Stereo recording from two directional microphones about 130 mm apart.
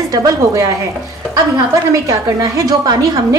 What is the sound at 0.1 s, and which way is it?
A woman's voice, 25° right (ahead or behind).